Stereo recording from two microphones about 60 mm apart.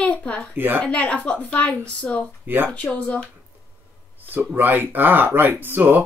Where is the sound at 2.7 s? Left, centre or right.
Left.